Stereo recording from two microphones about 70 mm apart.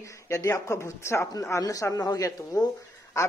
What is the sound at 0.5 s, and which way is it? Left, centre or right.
Speech, left.